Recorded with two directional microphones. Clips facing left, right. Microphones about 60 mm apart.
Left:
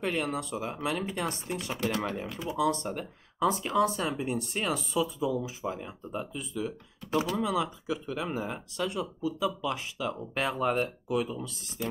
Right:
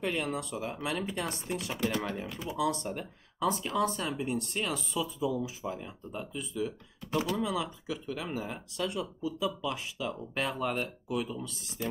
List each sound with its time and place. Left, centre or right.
0.0 s speech: centre